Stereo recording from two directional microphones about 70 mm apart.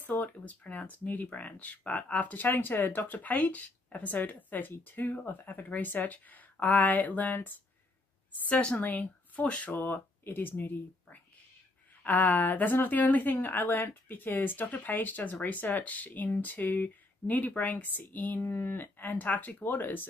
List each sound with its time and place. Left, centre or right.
0.0 s speech: left
8.5 s a woman's voice: centre